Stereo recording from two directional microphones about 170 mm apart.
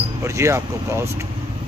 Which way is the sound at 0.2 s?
15° right (ahead or behind).